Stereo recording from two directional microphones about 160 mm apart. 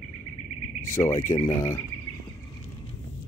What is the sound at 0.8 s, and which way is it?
Speech, 15° left (ahead or behind).